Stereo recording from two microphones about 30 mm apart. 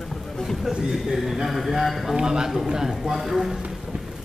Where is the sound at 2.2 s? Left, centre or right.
Right.